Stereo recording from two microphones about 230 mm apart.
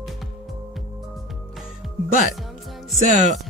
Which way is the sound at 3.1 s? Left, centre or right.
Right.